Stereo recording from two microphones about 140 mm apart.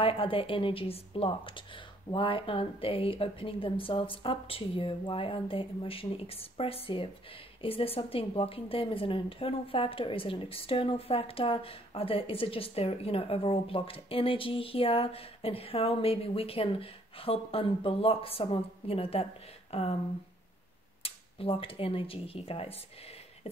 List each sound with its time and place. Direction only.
0.0 s a woman's voice: 40° left (ahead or behind)
21.0 s speech: 40° left (ahead or behind)